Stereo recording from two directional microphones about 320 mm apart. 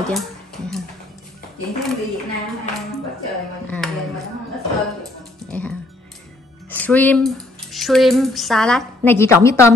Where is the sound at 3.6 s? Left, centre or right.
Centre.